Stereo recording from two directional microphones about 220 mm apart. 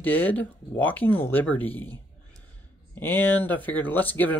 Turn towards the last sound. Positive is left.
turn(degrees=10)  # may be behind; listen again after turning